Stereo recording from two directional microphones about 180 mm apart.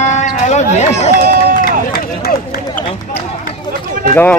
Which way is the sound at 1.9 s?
55° left (ahead or behind).